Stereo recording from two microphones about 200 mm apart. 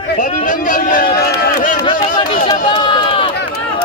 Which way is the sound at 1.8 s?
20° left (ahead or behind).